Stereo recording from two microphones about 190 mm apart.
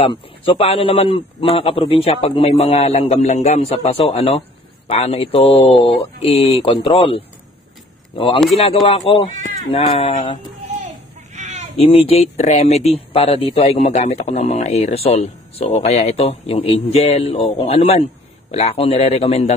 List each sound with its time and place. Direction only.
0.0 s speech: 30° left (ahead or behind)
8.8 s speech: 30° left (ahead or behind)
9.3 s bleat: 40° right (ahead or behind)
9.7 s speech: 30° left (ahead or behind)
11.3 s bleat: 40° right (ahead or behind)
11.7 s speech: 30° left (ahead or behind)